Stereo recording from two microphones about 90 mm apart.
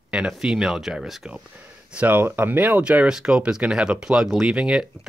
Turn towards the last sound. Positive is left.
turn(degrees=-10)  # may be behind; listen again after turning